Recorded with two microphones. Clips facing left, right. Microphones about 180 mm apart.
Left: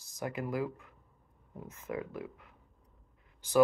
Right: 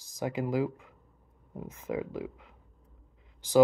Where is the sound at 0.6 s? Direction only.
20° right (ahead or behind).